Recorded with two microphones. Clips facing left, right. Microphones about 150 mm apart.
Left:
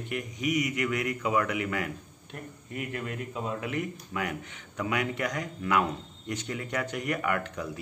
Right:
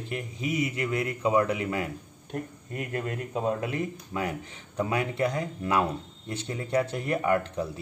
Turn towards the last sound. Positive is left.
turn(degrees=-30)  # may be behind; listen again after turning